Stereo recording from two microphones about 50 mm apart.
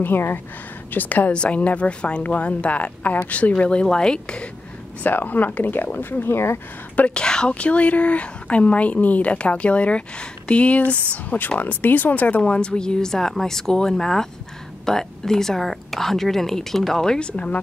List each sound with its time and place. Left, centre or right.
0.0 s speech: left
0.9 s speech: left
1.3 s a woman's voice: left
5.0 s speech: left
7.2 s a woman's voice: centre
17.3 s speech: left